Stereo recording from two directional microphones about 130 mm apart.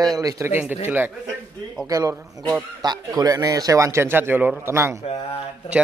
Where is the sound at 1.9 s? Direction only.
25° right (ahead or behind).